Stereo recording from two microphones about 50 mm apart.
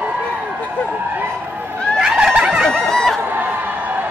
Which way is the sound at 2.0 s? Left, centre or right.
Centre.